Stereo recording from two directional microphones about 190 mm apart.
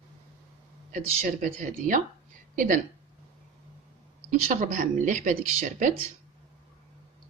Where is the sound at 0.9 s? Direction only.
45° right (ahead or behind).